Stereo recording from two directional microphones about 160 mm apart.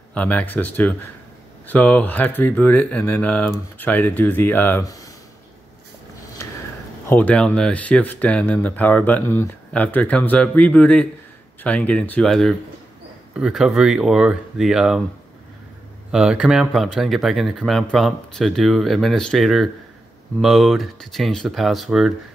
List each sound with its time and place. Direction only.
0.1 s speech: 10° left (ahead or behind)
6.4 s a sound: 15° left (ahead or behind)
7.1 s speech: 10° left (ahead or behind)
16.1 s speech: 5° right (ahead or behind)